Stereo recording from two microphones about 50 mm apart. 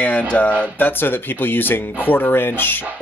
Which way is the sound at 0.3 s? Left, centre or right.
Left.